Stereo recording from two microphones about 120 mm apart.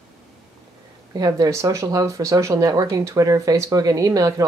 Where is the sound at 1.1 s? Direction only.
30° right (ahead or behind).